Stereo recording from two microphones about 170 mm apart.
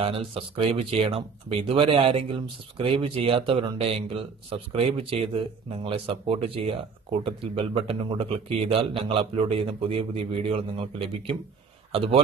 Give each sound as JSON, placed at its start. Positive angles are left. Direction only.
{"t": 0.0, "sound": "speech", "side_deg": -35}